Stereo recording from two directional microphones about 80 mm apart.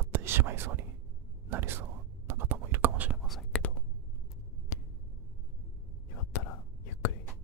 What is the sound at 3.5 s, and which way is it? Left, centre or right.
Whispering, centre.